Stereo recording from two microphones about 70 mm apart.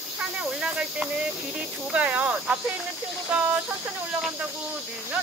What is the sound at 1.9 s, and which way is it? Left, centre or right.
Cricket, right.